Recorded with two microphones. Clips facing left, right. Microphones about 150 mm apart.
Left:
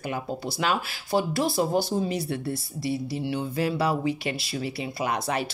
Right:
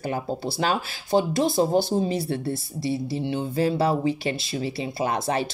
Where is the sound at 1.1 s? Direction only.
20° right (ahead or behind).